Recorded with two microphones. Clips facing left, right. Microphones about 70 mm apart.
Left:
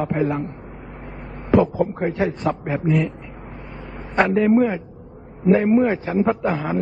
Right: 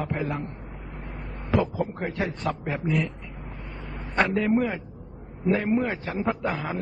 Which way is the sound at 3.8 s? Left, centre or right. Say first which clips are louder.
Left 5 dB; centre.